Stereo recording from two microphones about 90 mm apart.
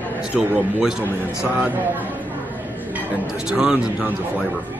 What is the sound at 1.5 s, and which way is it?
Speech, 20° right (ahead or behind).